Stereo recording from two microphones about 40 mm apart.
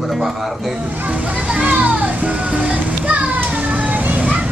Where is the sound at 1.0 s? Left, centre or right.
Right.